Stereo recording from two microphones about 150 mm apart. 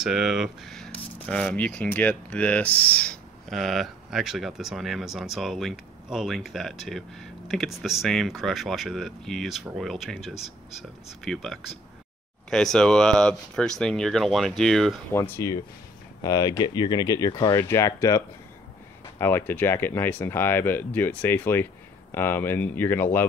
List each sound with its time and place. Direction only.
0.0 s speech: 5° right (ahead or behind)
15.1 s speech: 15° left (ahead or behind)